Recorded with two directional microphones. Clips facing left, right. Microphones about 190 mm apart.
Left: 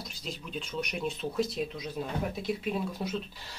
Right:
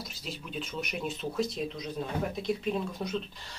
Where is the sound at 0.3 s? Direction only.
Centre (ahead or behind).